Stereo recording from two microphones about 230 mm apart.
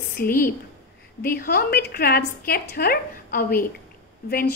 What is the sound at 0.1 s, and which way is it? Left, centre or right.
A woman's voice, left.